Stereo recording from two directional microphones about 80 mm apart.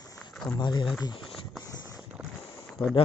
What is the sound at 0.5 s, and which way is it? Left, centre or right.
Speech, left.